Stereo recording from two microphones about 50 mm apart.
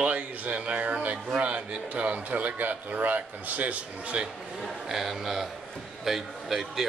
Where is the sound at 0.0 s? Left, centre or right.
Right.